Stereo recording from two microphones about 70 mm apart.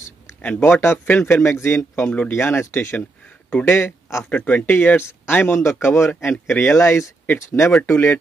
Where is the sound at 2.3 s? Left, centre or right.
Left.